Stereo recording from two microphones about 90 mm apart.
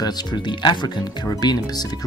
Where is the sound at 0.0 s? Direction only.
50° left (ahead or behind).